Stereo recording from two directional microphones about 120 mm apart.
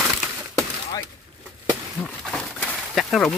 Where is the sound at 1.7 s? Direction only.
10° left (ahead or behind).